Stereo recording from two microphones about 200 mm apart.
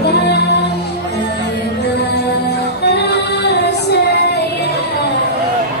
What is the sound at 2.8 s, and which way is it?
Female singing, 55° left (ahead or behind).